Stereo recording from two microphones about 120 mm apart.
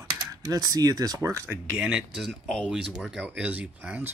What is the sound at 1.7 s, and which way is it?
Speech, 10° right (ahead or behind).